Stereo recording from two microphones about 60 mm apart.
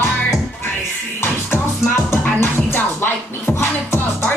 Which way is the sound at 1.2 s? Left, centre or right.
Left.